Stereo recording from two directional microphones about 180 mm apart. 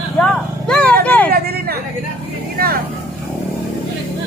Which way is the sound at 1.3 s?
60° right (ahead or behind).